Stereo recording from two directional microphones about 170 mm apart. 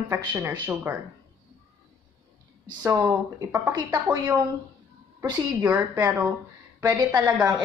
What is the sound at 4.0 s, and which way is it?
Speech, 10° right (ahead or behind).